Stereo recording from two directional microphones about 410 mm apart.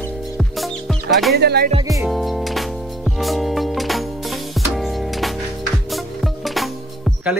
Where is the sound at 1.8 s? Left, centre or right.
Centre.